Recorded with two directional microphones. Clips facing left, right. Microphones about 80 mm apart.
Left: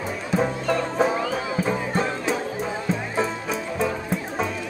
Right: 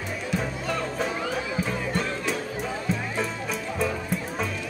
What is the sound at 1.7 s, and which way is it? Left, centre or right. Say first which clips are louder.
Music: left 4 dB; left.